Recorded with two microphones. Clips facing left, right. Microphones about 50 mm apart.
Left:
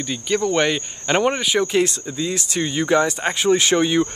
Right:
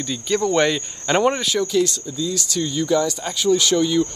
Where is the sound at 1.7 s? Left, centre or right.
Left.